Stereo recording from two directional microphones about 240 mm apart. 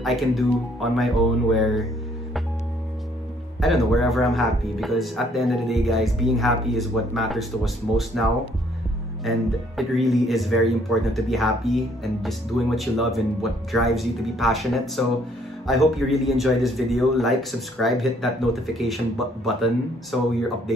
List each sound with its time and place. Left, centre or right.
0.0 s speech: centre
3.6 s speech: centre
9.2 s speech: centre